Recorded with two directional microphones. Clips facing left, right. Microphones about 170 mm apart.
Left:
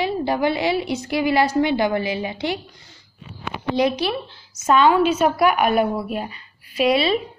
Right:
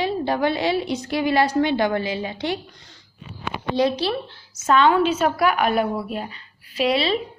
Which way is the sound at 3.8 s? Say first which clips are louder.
Even; 15° left (ahead or behind).